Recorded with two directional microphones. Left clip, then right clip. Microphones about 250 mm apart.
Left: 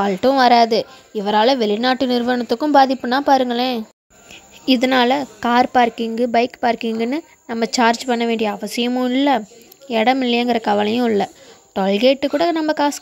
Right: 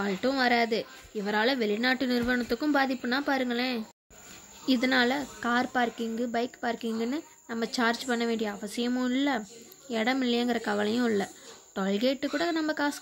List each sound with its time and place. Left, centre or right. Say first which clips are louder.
0.0 s a woman's voice: left 13 dB; left